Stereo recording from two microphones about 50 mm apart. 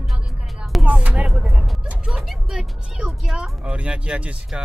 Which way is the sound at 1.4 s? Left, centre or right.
Centre.